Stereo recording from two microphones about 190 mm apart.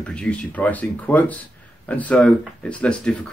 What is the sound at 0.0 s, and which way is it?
Speech, 5° left (ahead or behind).